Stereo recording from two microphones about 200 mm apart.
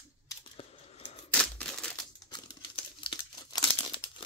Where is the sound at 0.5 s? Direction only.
30° left (ahead or behind).